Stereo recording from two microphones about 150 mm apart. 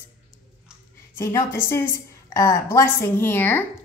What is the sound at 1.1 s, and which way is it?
A woman's voice, 20° left (ahead or behind).